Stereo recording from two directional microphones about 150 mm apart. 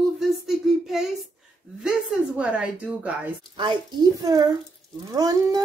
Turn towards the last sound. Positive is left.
turn(degrees=-25)  # may be behind; listen again after turning